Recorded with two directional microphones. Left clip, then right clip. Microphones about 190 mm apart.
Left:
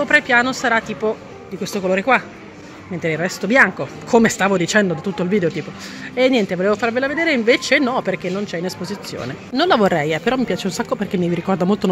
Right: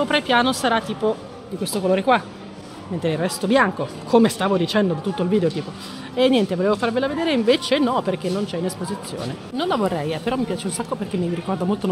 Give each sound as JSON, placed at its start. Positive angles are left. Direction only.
{"t": 0.0, "sound": "speech", "side_deg": -5}
{"t": 9.6, "sound": "speech", "side_deg": 20}